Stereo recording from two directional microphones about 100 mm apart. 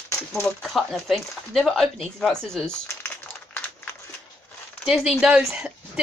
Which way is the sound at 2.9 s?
15° left (ahead or behind).